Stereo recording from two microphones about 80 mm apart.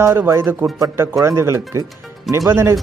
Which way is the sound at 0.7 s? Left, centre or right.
Right.